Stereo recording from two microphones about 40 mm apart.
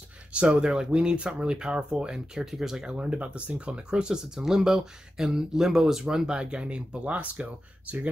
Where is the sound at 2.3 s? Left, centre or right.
Centre.